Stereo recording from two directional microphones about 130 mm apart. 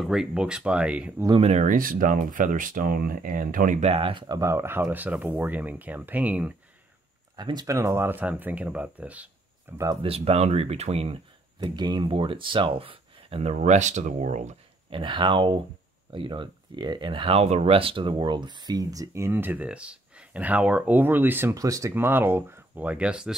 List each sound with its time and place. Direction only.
0.0 s speech: 5° right (ahead or behind)
1.4 s speech: 65° right (ahead or behind); by 3.8 s 90° right
3.8 s speech: 45° right (ahead or behind)
4.4 s speech: 20° right (ahead or behind)
7.3 s speech: 35° right (ahead or behind); by 9.8 s 15° right (ahead or behind)
10.0 s speech: 50° right (ahead or behind)
11.6 s speech: 35° right (ahead or behind); by 14.5 s 65° right (ahead or behind)
14.9 s speech: 40° right (ahead or behind); by 23.3 s 5° right (ahead or behind)